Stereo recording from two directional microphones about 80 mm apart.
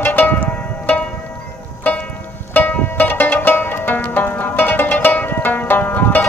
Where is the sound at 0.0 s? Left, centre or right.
Left.